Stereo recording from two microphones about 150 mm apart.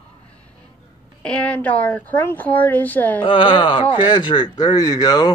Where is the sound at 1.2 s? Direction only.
10° left (ahead or behind).